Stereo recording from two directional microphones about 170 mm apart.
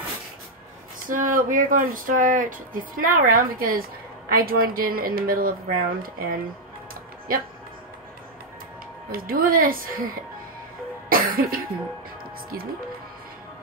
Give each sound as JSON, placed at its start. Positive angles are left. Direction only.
{"t": 1.0, "sound": "speech", "side_deg": -55}
{"t": 9.1, "sound": "speech", "side_deg": -60}
{"t": 11.1, "sound": "cough", "side_deg": -60}